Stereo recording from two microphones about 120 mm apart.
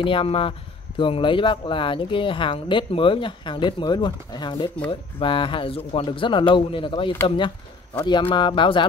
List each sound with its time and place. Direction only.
0.0 s speech: 45° left (ahead or behind)